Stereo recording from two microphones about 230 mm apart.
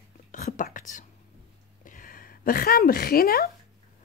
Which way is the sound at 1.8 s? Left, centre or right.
Left.